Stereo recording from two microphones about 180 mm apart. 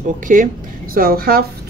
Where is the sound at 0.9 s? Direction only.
55° right (ahead or behind).